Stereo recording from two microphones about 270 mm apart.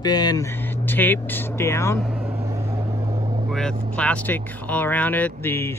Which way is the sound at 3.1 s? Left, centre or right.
Right.